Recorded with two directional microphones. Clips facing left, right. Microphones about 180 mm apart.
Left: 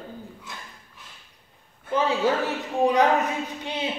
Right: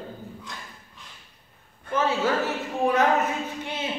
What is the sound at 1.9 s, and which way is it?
Speech, 15° left (ahead or behind).